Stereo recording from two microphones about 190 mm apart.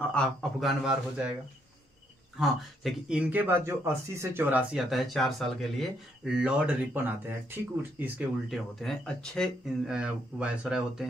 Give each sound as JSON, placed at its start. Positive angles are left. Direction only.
{"t": 0.1, "sound": "a man's voice", "side_deg": 5}
{"t": 2.3, "sound": "a man's voice", "side_deg": 0}